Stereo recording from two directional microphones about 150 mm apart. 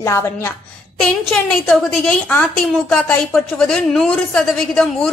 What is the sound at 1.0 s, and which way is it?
A woman's voice, 5° left (ahead or behind).